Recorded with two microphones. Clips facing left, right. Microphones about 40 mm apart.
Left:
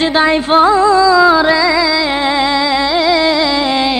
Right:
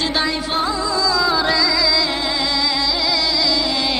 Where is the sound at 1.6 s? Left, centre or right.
Left.